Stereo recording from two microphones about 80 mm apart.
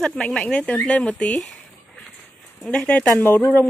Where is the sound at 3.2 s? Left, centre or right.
Left.